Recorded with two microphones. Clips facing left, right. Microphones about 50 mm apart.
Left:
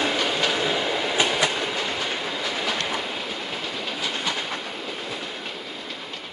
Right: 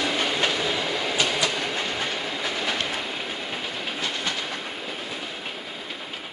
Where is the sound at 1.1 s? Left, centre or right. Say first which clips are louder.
Left 2 dB; left.